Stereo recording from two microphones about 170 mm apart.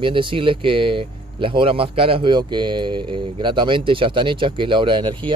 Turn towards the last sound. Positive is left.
turn(degrees=-30)  # may be behind; listen again after turning